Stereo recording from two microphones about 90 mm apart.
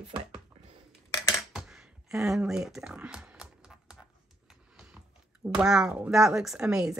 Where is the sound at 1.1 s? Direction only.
35° left (ahead or behind).